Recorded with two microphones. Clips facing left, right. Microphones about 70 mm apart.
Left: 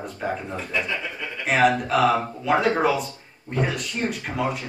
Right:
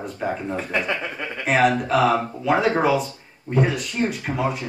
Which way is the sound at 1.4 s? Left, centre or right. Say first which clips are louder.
Right 1 dB; centre.